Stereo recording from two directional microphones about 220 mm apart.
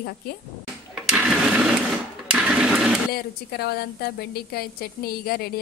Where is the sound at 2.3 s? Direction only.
5° right (ahead or behind).